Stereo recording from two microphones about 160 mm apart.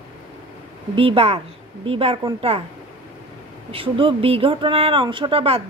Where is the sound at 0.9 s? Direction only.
35° right (ahead or behind).